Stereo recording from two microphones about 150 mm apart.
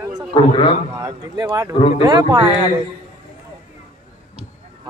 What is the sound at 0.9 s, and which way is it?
Speech, 25° right (ahead or behind).